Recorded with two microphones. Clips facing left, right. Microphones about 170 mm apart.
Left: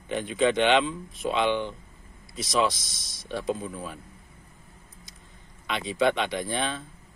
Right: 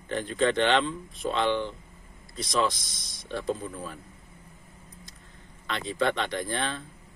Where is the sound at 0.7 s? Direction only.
5° left (ahead or behind).